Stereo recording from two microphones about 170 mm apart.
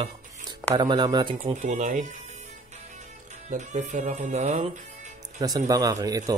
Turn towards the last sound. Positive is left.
turn(degrees=-20)  # may be behind; listen again after turning